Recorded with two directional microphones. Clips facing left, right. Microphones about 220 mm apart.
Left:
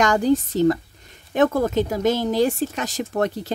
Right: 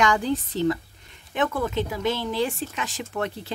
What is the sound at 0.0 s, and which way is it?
Speech, 45° left (ahead or behind).